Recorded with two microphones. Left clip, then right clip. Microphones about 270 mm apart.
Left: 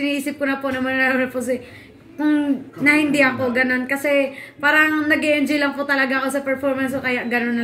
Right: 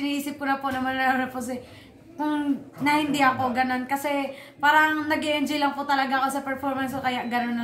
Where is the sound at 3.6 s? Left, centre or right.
Centre.